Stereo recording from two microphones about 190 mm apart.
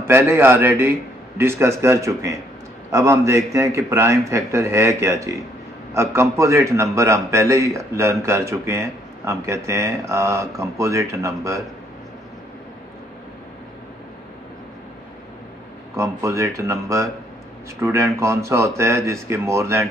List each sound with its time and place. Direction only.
0.0 s a man's voice: 15° right (ahead or behind)
16.0 s a man's voice: 15° right (ahead or behind)